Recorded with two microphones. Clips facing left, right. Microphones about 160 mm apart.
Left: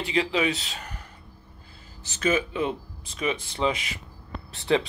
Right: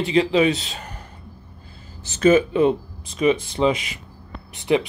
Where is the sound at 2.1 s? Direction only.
35° right (ahead or behind).